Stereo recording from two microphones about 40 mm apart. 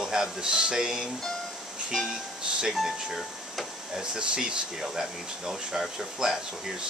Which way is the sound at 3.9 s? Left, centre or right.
Centre.